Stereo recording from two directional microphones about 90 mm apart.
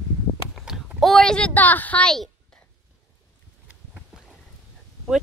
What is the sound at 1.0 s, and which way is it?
Speech, 5° left (ahead or behind).